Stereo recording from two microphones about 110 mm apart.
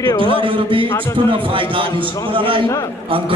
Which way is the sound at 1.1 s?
55° right (ahead or behind).